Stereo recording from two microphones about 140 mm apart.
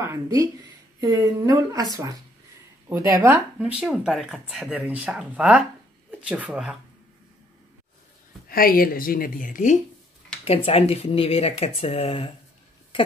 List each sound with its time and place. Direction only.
0.0 s a woman's voice: 20° right (ahead or behind)
2.9 s speech: 15° right (ahead or behind)
8.5 s speech: 90° left; by 9.8 s 70° left (ahead or behind)
10.4 s speech: 45° left (ahead or behind)